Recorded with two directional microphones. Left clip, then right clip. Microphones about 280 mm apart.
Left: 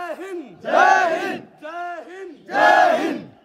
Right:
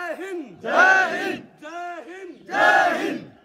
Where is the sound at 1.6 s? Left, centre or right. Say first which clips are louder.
Left 3 dB; right.